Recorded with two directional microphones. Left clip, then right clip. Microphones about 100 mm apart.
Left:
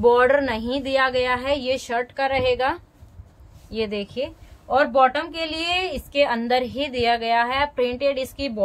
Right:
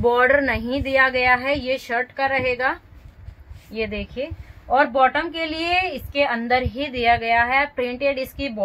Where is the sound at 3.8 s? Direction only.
90° left.